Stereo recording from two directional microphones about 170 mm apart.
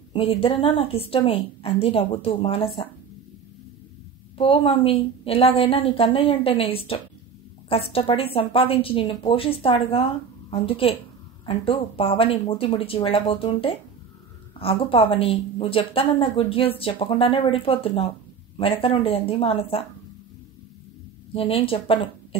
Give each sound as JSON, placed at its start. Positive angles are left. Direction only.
{"t": 0.1, "sound": "a woman's voice", "side_deg": 35}
{"t": 4.4, "sound": "a woman's voice", "side_deg": 30}
{"t": 21.3, "sound": "speech", "side_deg": 30}